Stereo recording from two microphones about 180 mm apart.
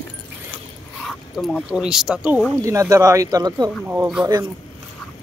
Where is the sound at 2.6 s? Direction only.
15° right (ahead or behind).